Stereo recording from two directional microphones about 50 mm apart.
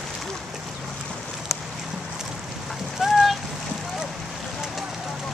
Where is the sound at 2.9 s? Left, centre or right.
Centre.